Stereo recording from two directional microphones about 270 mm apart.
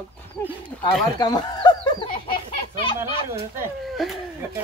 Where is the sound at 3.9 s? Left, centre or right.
Centre.